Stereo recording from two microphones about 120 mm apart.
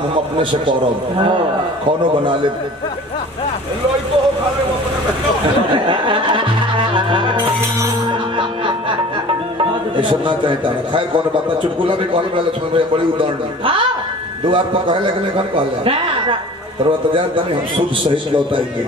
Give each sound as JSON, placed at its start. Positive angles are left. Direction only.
{"t": 0.1, "sound": "a man's voice", "side_deg": -45}
{"t": 1.9, "sound": "a man's voice", "side_deg": -45}
{"t": 5.9, "sound": "a man's voice", "side_deg": -45}
{"t": 7.0, "sound": "music", "side_deg": -40}
{"t": 9.9, "sound": "a man's voice", "side_deg": -45}